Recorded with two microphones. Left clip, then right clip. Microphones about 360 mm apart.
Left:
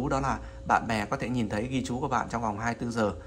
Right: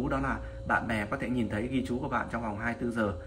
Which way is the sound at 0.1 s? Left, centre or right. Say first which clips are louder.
Left 3 dB; centre.